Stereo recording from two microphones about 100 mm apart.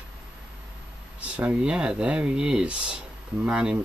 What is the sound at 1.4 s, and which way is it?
Speech, 10° right (ahead or behind).